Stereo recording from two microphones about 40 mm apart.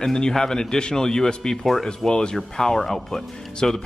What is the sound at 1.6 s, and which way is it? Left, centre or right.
Speech, centre.